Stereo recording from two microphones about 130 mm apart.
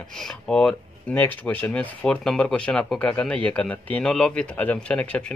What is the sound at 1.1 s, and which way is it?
Speech, 15° left (ahead or behind).